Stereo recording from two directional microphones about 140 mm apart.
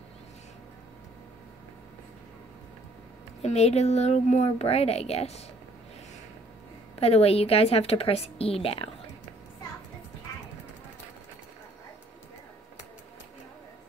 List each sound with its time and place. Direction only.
3.4 s speech: 50° left (ahead or behind)
7.0 s speech: 45° left (ahead or behind)